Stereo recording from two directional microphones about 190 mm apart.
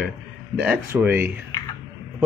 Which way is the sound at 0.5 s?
5° right (ahead or behind).